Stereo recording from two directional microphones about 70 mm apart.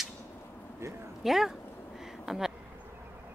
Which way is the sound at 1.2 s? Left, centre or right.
Centre.